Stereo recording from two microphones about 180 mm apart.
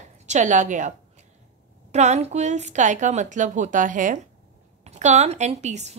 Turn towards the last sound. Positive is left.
turn(degrees=-40)  # may be behind; listen again after turning